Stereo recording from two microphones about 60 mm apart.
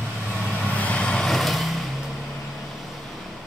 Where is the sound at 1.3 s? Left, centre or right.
Centre.